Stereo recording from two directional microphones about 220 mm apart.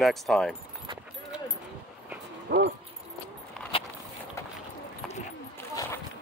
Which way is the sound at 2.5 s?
50° right (ahead or behind).